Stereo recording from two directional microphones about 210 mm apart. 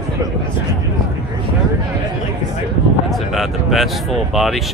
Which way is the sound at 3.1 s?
Centre (ahead or behind).